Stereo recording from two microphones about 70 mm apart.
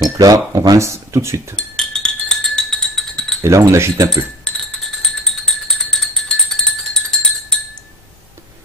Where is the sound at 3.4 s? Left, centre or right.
Right.